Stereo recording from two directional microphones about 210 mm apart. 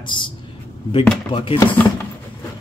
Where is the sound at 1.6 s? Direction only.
10° left (ahead or behind).